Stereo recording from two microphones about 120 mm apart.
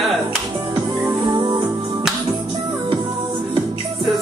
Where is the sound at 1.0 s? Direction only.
35° right (ahead or behind).